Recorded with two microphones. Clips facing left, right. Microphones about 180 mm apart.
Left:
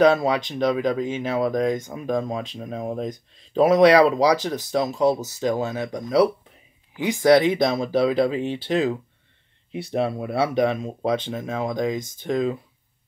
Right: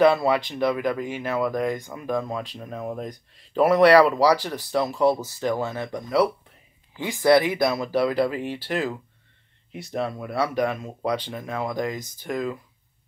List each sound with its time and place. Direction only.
0.0 s speech: 20° left (ahead or behind)